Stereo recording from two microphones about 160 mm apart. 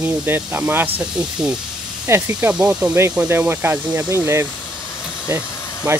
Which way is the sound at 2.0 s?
15° right (ahead or behind).